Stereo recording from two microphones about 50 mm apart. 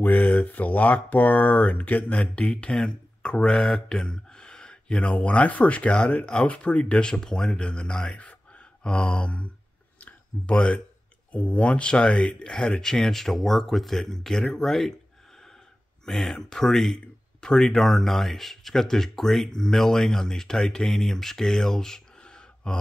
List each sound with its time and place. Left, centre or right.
0.0 s speech: left
3.6 s a sound: centre
5.1 s speech: left
9.9 s a sound: left
11.3 s speech: left; by 15.0 s centre
16.1 s speech: centre